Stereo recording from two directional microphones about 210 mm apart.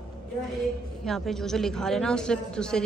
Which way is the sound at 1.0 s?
Centre (ahead or behind).